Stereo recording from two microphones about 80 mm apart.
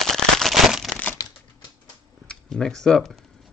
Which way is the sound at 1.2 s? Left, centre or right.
Left.